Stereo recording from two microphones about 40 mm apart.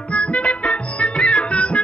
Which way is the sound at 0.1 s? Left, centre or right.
Left.